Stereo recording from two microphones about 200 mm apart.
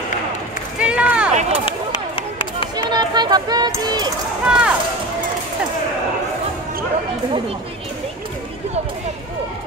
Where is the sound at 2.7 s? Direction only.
20° right (ahead or behind).